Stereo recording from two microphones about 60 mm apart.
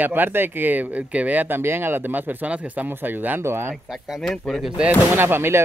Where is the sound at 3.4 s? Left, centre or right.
Right.